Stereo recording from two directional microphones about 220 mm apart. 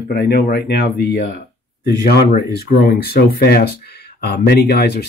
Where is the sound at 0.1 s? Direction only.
45° left (ahead or behind).